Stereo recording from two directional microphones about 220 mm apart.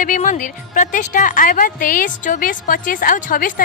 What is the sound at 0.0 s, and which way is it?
A woman's voice, 35° left (ahead or behind).